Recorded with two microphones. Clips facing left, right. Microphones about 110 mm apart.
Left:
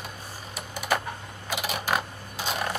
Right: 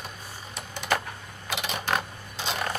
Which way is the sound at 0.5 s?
10° left (ahead or behind).